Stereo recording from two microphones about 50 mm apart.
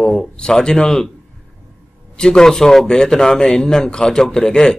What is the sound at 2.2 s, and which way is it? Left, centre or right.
A man's voice, centre.